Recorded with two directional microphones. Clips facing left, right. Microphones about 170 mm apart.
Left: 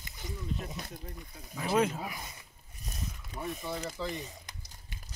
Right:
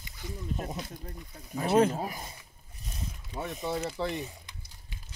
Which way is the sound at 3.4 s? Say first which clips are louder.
Right 4 dB; 70° right (ahead or behind).